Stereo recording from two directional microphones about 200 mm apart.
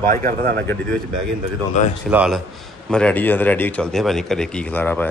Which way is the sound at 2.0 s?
5° right (ahead or behind).